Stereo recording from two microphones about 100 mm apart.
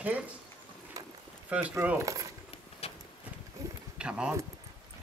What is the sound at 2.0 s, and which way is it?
Speech, 35° right (ahead or behind).